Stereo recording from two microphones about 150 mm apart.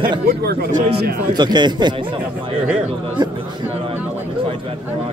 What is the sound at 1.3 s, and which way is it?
Speech, 30° right (ahead or behind).